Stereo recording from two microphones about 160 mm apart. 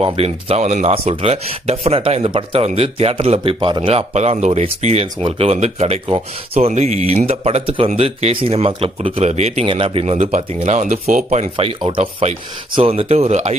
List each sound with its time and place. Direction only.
0.0 s speech: 35° right (ahead or behind)